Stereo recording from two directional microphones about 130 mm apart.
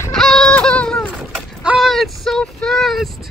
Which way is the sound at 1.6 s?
10° right (ahead or behind).